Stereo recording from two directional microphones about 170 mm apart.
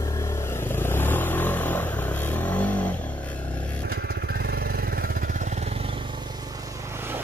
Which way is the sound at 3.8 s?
65° right (ahead or behind).